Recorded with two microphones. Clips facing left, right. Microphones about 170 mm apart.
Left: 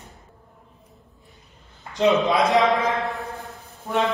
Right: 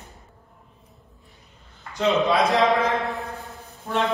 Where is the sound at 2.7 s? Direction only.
Centre (ahead or behind).